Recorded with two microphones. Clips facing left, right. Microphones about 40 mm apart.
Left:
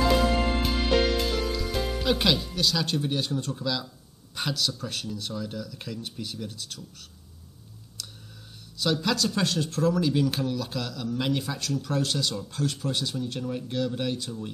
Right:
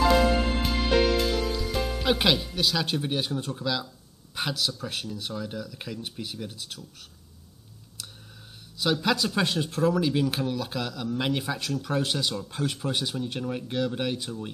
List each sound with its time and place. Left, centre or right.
0.1 s music: centre
2.0 s speech: centre
8.0 s clicking: centre
8.7 s speech: centre